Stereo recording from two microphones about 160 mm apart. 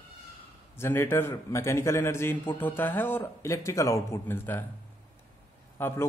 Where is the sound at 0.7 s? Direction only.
15° left (ahead or behind).